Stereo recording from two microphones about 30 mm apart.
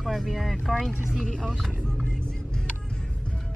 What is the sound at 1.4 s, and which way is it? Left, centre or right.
Speech, centre.